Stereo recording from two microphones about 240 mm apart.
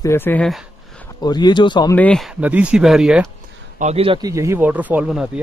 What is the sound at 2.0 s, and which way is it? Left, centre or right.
Speech, centre.